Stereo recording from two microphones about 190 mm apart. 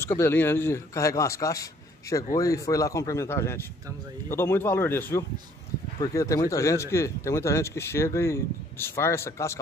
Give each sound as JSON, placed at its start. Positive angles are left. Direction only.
{"t": 0.0, "sound": "speech", "side_deg": 15}